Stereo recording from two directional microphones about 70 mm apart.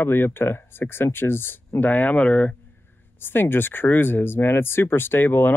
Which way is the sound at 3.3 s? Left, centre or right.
Left.